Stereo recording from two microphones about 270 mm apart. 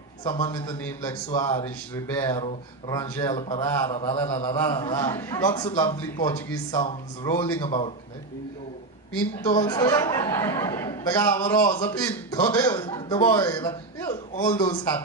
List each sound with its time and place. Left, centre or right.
0.3 s speech: centre
9.5 s speech: centre